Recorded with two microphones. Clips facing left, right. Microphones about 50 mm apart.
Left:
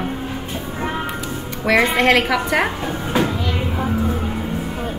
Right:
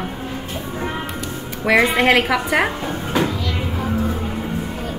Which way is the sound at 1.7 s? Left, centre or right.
Centre.